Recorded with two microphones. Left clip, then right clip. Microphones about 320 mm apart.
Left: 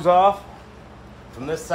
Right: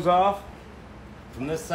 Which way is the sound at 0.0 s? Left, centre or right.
Centre.